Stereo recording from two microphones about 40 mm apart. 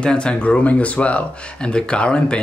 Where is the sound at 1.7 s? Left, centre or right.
Left.